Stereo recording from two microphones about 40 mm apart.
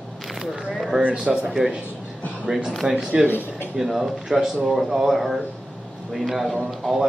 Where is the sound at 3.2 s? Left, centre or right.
Left.